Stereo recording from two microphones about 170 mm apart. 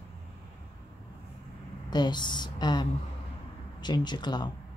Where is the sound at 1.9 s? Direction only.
25° left (ahead or behind).